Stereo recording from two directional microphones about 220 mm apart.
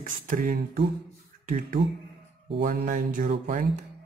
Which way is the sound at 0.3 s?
40° right (ahead or behind).